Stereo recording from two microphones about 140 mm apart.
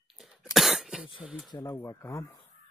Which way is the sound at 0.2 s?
5° right (ahead or behind).